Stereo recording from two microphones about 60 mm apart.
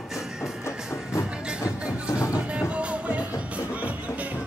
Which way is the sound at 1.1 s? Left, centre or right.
Left.